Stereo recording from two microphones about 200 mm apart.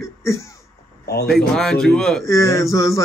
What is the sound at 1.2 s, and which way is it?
Speech, centre (ahead or behind).